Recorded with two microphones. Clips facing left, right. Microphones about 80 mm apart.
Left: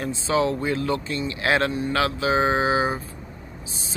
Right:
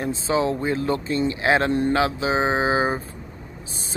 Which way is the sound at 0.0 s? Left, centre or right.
Right.